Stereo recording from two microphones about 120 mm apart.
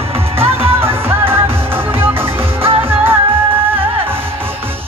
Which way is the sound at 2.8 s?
20° right (ahead or behind).